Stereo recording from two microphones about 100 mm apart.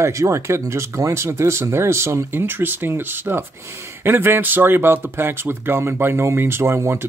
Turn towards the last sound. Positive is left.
turn(degrees=-25)  # may be behind; listen again after turning